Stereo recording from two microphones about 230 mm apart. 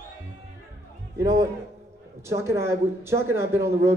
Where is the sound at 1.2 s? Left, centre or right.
Centre.